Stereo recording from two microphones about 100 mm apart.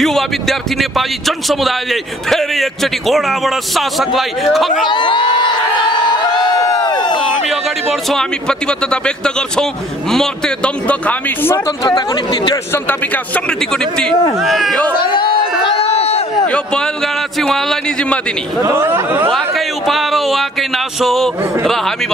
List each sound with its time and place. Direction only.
0.0 s speech: centre (ahead or behind)
4.8 s crowd: 55° left (ahead or behind)
7.4 s a man's voice: centre (ahead or behind); by 11.5 s 15° left (ahead or behind)
11.5 s speech: 35° left (ahead or behind)
12.7 s a man's voice: 15° left (ahead or behind); by 14.8 s centre (ahead or behind)
15.0 s a sound: 60° left (ahead or behind)
15.6 s a sound: 90° left
16.4 s a man's voice: 10° left (ahead or behind)
18.6 s speech: 25° right (ahead or behind)
19.3 s speech: centre (ahead or behind)